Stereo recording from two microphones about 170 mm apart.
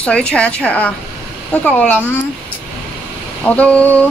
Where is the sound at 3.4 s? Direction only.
5° left (ahead or behind).